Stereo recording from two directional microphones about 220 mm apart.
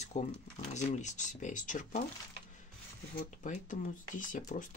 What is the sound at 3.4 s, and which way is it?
Speech, 35° left (ahead or behind).